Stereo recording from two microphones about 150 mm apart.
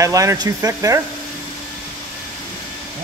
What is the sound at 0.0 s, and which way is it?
Speech, 20° right (ahead or behind).